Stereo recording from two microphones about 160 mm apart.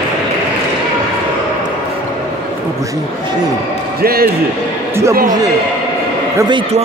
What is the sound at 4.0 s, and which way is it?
Basketball bounce, 70° right (ahead or behind).